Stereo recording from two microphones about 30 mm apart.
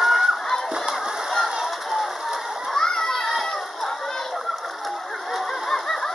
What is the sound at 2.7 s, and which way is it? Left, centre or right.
Crowd, centre.